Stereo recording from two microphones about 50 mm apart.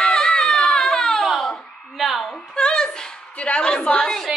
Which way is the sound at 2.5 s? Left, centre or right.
Centre.